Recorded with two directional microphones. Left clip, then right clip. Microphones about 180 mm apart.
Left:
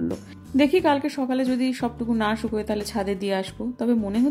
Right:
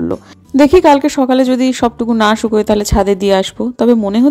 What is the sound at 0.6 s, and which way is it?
Speech, 40° right (ahead or behind).